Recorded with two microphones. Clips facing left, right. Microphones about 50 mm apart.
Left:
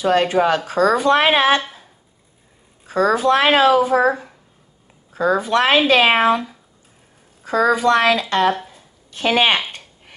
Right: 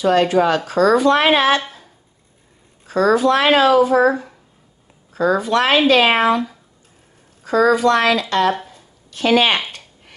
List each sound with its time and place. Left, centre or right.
0.0 s speech: left
2.9 s speech: left
5.9 s speech: centre
7.4 s speech: left
9.7 s a sound: centre